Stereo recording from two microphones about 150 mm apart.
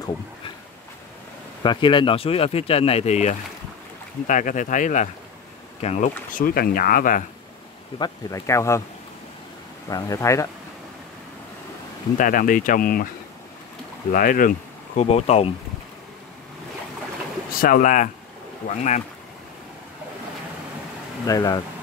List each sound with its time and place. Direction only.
1.6 s speech: 30° left (ahead or behind); by 6.1 s 50° left (ahead or behind)
6.3 s speech: 85° left; by 7.2 s 65° left (ahead or behind)
8.0 s speech: 20° left (ahead or behind)
9.8 s speech: 25° left (ahead or behind)
12.2 s speech: 65° left (ahead or behind)
14.1 s speech: 65° left (ahead or behind)
15.0 s speech: 45° left (ahead or behind)
17.5 s speech: 70° left (ahead or behind); by 19.0 s 50° left (ahead or behind)
21.3 s speech: 25° left (ahead or behind)